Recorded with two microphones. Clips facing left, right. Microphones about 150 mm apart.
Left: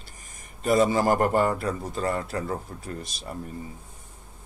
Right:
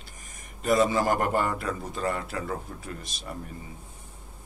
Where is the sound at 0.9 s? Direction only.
40° left (ahead or behind).